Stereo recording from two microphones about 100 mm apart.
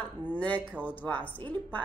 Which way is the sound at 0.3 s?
15° left (ahead or behind).